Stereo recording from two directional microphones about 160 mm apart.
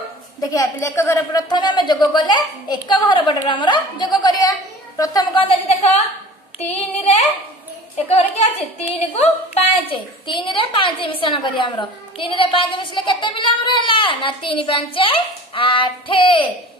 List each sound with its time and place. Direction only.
0.4 s a woman's voice: 20° left (ahead or behind); by 6.0 s 40° left (ahead or behind)
8.1 s a woman's voice: 40° left (ahead or behind)